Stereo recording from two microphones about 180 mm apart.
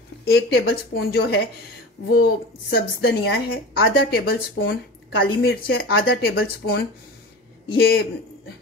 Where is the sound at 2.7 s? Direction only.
60° left (ahead or behind).